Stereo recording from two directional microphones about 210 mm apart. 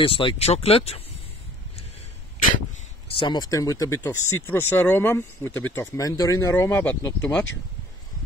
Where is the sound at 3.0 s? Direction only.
25° left (ahead or behind); by 7.4 s 10° left (ahead or behind).